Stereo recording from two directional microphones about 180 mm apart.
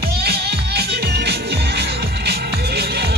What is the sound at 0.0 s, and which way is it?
Music, 65° right (ahead or behind).